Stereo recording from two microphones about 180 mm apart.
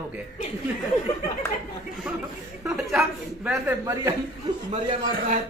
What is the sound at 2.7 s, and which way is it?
Speech, 5° right (ahead or behind).